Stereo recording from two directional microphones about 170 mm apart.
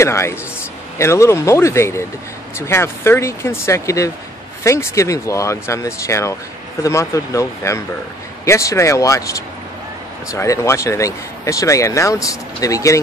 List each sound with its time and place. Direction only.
0.0 s speech: 15° left (ahead or behind)